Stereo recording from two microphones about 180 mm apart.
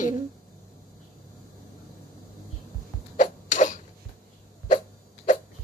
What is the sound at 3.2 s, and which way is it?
Sneeze, 45° left (ahead or behind).